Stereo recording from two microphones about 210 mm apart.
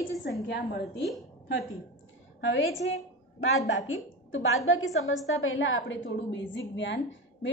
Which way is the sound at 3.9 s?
75° left (ahead or behind).